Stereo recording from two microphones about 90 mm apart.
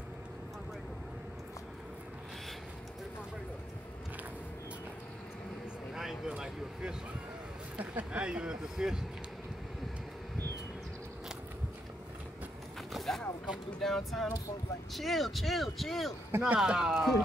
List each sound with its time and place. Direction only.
5.9 s a sound: 5° right (ahead or behind)
7.7 s speech: 15° right (ahead or behind)
12.9 s a sound: 5° left (ahead or behind)
13.7 s speech: 5° left (ahead or behind)
16.3 s speech: 25° right (ahead or behind)
16.5 s speech: 5° right (ahead or behind)